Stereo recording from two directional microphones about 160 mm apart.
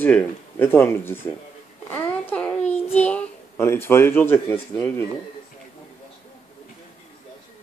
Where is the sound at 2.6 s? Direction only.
45° left (ahead or behind).